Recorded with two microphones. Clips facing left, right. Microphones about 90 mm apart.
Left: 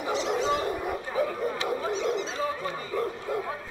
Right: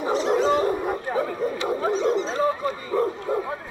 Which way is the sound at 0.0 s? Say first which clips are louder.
Right 6 dB; 40° right (ahead or behind).